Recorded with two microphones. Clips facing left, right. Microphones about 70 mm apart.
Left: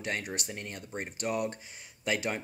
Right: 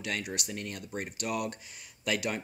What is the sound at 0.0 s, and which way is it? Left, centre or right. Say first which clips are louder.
Speech: even; left.